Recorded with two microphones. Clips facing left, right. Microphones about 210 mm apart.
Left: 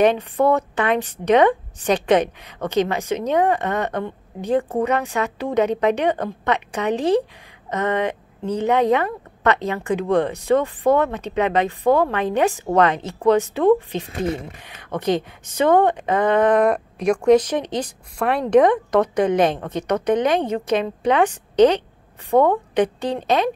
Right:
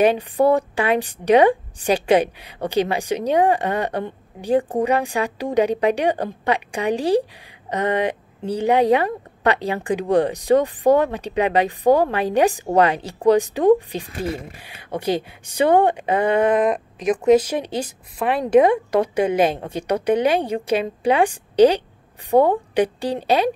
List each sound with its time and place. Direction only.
0.0 s a woman's voice: 10° right (ahead or behind)
11.8 s a woman's voice: 35° right (ahead or behind)
12.1 s speech: 10° right (ahead or behind)
22.3 s a woman's voice: 35° right (ahead or behind)
22.8 s speech: 10° right (ahead or behind)